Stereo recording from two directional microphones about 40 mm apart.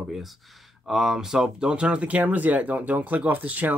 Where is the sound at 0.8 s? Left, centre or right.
Centre; by 3.7 s right.